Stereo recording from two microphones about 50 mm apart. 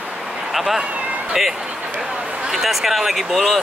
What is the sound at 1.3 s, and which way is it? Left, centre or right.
Speech, centre.